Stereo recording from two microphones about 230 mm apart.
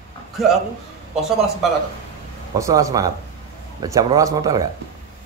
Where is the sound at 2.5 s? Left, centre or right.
Centre.